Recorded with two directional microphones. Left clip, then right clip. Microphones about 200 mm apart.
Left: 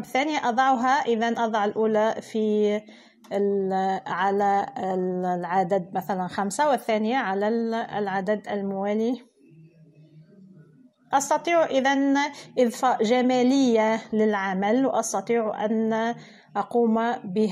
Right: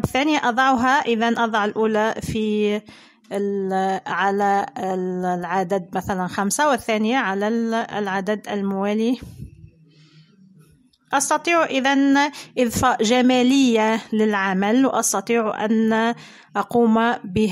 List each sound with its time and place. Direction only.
0.1 s a woman's voice: 20° right (ahead or behind)
11.1 s a woman's voice: 20° right (ahead or behind)